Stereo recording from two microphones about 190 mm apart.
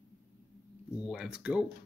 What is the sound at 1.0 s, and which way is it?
Speech, 5° right (ahead or behind).